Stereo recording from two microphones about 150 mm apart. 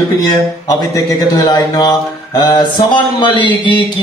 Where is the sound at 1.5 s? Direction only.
25° left (ahead or behind).